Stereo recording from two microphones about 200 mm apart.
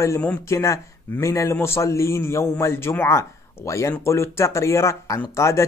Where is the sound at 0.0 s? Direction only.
10° left (ahead or behind).